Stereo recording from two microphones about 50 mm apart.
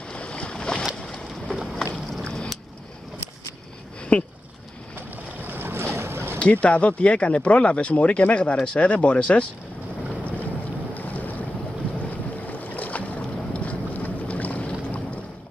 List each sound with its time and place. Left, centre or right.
0.1 s boat: left
1.6 s boat: centre
2.2 s vehicle: centre
4.1 s speech: left
4.9 s boat: right
6.6 s speech: left
11.0 s boat: left